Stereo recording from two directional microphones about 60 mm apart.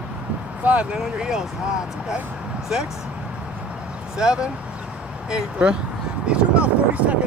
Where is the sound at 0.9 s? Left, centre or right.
Centre.